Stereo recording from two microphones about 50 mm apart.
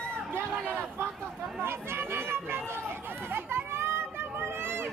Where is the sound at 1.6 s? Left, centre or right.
Right.